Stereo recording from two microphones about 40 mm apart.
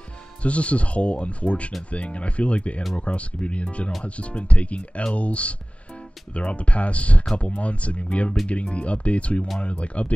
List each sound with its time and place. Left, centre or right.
0.4 s speech: left